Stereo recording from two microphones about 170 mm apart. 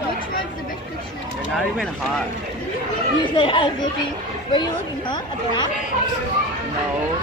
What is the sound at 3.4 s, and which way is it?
Speech, 30° left (ahead or behind).